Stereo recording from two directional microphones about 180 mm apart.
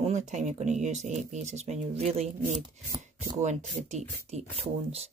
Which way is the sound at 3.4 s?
40° right (ahead or behind).